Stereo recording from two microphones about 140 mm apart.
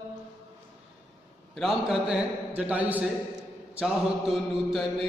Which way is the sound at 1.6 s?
Centre (ahead or behind).